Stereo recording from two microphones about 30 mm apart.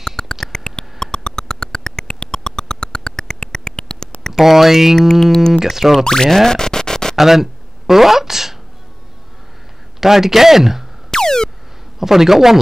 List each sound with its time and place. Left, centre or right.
0.0 s mouse: centre
0.5 s a sound: left
4.3 s speech: centre
5.2 s speech: centre
5.5 s speech: centre
6.0 s boing: left
6.3 s scratch: centre
7.2 s a sound: centre
9.9 s speech: centre
11.1 s a sound: left
12.0 s speech: centre